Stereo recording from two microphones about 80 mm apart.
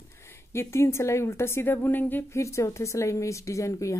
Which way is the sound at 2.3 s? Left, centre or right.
Left.